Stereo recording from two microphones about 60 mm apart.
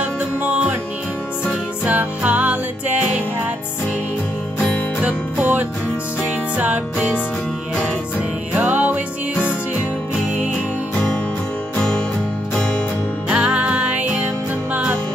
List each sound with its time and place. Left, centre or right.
0.0 s music: right
1.9 s music: right
5.0 s music: right
8.5 s music: right
11.7 s music: centre
13.3 s music: centre